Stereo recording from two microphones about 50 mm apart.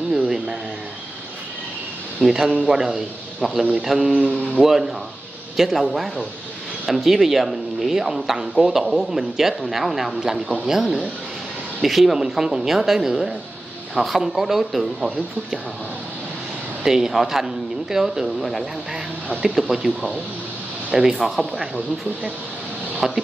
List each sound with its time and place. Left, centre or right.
2.2 s a man's voice: centre
4.3 s speech: right
4.6 s speech: centre
16.8 s speech: centre
20.9 s speech: centre
21.2 s speech: centre
22.9 s a sound: centre